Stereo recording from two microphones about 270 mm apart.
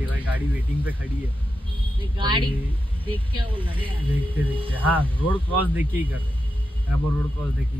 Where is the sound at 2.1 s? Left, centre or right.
Centre.